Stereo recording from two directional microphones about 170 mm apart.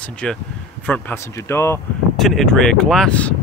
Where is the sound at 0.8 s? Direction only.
10° left (ahead or behind).